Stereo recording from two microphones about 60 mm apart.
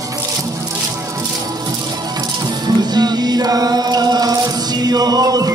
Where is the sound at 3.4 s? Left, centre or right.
Right.